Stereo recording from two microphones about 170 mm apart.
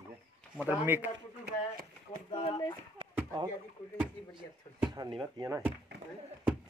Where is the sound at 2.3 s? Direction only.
25° left (ahead or behind).